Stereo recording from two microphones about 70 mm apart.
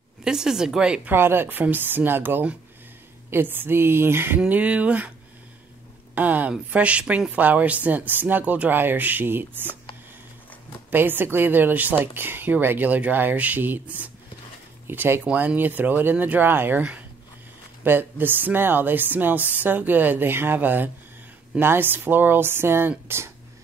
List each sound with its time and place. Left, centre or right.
0.2 s speech: centre
1.0 s speech: right
4.5 s speech: right
6.1 s speech: right
10.9 s speech: right
14.9 s speech: right
17.8 s speech: right